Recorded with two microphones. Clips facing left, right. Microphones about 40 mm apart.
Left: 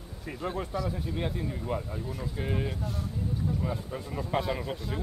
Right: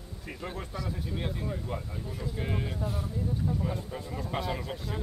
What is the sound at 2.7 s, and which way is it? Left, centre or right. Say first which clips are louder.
Speech: right 2 dB; centre.